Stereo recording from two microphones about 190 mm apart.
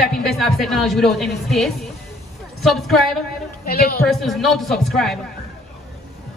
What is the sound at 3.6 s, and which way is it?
Speech, 50° left (ahead or behind).